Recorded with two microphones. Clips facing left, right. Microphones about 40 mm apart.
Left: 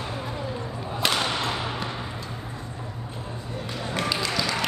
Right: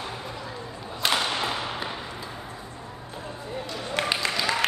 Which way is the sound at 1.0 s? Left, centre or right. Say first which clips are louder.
Even; centre.